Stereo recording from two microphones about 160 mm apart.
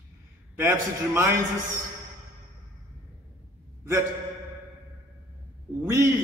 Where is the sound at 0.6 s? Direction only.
15° right (ahead or behind).